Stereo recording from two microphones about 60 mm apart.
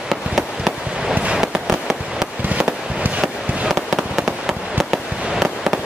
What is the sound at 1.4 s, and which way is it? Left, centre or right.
Fireworks, centre.